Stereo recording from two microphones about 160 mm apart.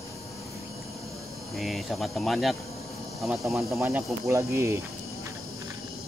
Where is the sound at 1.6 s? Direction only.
Centre (ahead or behind).